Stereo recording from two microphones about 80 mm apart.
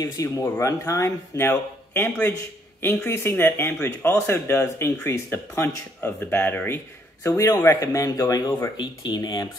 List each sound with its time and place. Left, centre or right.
0.0 s speech: left
3.1 s speech: left
7.7 s speech: left
8.7 s speech: left